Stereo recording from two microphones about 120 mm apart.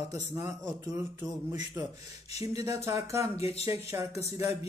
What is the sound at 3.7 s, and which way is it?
Speech, 25° right (ahead or behind).